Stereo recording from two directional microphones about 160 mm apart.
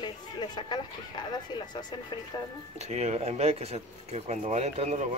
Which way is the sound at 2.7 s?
45° right (ahead or behind).